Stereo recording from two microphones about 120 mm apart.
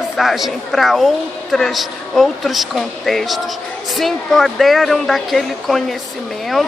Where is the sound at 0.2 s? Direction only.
Centre (ahead or behind).